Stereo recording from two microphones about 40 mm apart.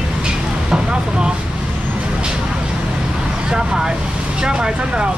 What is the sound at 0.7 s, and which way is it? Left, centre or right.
Speech, right.